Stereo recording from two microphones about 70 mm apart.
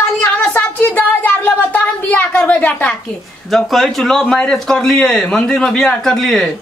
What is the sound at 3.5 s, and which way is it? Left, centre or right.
Speech, centre.